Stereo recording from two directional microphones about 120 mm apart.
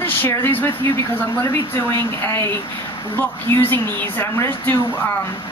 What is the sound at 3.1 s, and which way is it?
Speech, 15° left (ahead or behind).